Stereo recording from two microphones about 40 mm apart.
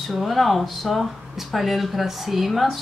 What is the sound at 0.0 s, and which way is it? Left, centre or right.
A woman's voice, centre.